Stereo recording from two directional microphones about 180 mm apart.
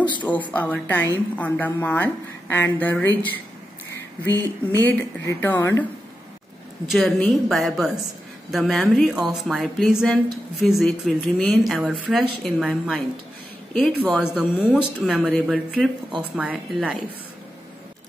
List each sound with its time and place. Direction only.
0.0 s speech: 25° left (ahead or behind)
0.3 s a woman's voice: 10° left (ahead or behind)
4.3 s a sound: 20° right (ahead or behind)
4.8 s a woman's voice: 15° left (ahead or behind)
6.9 s speech: centre (ahead or behind)
14.0 s speech: 5° left (ahead or behind)